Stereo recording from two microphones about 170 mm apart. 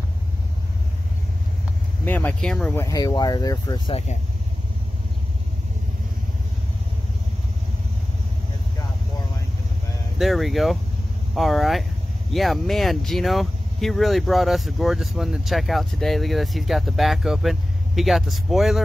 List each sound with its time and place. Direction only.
2.0 s speech: 10° left (ahead or behind)
10.1 s speech: centre (ahead or behind)